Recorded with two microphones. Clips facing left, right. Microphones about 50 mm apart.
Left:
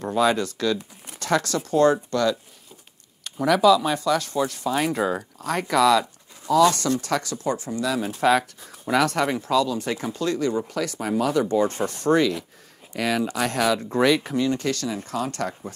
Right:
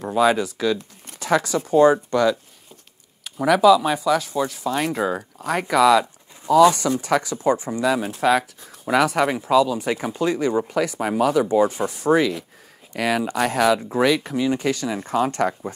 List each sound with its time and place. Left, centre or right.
0.0 s speech: centre
8.1 s speech: centre
14.4 s speech: centre
15.0 s speech: right